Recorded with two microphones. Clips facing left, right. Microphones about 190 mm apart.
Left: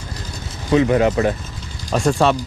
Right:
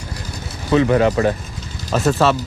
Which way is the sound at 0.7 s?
25° left (ahead or behind).